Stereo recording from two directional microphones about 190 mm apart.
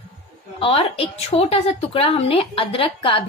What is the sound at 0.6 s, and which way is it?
A woman's voice, 30° left (ahead or behind).